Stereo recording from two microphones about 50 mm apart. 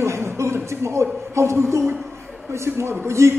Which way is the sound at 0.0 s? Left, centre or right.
Right.